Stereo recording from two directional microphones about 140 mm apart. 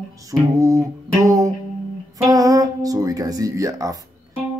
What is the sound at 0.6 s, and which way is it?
Music, 25° right (ahead or behind).